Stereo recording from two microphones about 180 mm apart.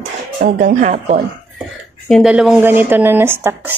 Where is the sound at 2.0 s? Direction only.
Centre (ahead or behind).